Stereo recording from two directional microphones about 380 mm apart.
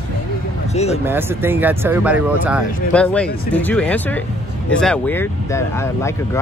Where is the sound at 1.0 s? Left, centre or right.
Centre.